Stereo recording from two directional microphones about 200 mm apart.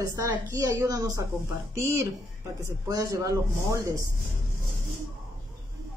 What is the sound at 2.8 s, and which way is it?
Speech, 20° right (ahead or behind).